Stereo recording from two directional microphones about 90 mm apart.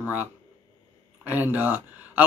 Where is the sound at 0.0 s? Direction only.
20° right (ahead or behind).